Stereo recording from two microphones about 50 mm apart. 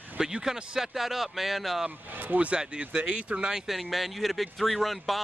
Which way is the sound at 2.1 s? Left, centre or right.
Right.